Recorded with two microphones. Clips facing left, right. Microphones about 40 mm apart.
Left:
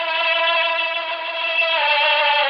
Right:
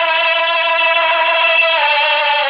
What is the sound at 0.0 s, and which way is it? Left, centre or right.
Vehicle, right.